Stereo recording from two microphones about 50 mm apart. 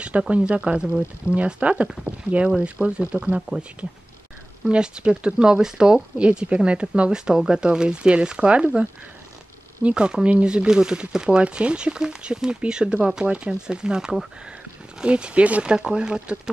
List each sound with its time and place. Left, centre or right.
0.4 s speech: right
3.3 s speech: centre
4.6 s speech: centre
9.8 s speech: centre